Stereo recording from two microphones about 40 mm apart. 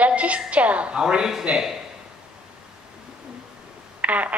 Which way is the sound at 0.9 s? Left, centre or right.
Centre.